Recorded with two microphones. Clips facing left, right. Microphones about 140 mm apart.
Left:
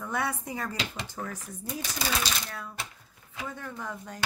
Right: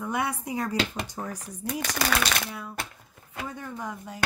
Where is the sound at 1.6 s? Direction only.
75° right (ahead or behind).